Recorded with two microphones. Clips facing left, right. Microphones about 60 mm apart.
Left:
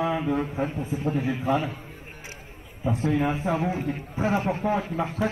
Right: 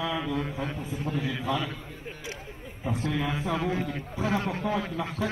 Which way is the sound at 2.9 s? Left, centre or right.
Left.